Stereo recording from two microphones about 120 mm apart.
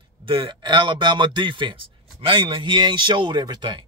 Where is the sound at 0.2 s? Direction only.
45° right (ahead or behind).